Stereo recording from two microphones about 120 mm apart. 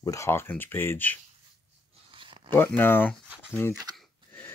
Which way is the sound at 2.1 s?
45° right (ahead or behind).